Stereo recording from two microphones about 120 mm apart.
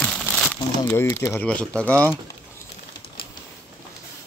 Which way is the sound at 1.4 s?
10° left (ahead or behind).